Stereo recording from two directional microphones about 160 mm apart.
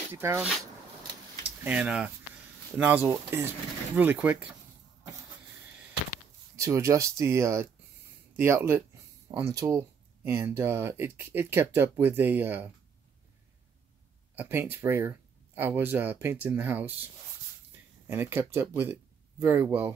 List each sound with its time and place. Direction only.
0.1 s speech: 15° right (ahead or behind)
1.6 s speech: 10° right (ahead or behind)
6.5 s speech: 20° right (ahead or behind)
14.3 s speech: 10° right (ahead or behind)
18.0 s speech: 15° right (ahead or behind)